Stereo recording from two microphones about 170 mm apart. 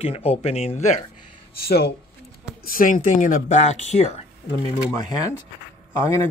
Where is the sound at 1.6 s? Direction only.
70° left (ahead or behind).